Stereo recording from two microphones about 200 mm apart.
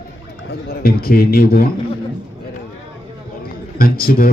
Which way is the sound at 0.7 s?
50° left (ahead or behind).